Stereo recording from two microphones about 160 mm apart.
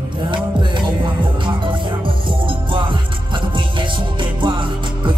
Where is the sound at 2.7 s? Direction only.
30° right (ahead or behind).